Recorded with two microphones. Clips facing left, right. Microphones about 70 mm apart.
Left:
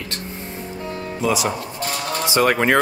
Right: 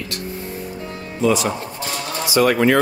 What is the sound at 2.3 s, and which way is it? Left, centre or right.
Speech, left.